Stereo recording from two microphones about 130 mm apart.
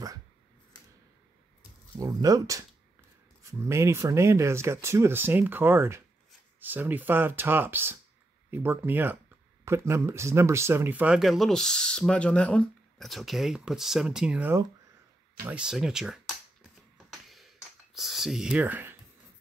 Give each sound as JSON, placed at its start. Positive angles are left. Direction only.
{"t": 2.0, "sound": "speech", "side_deg": -25}
{"t": 17.1, "sound": "a sound", "side_deg": 0}
{"t": 17.9, "sound": "speech", "side_deg": 0}